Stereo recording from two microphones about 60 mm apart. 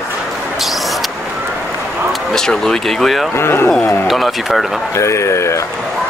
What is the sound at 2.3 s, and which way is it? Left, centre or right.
Speech, centre.